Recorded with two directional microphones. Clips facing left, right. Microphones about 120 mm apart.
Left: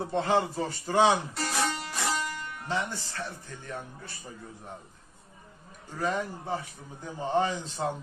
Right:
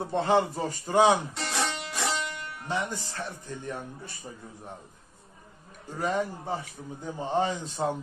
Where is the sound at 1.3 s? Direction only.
Centre (ahead or behind).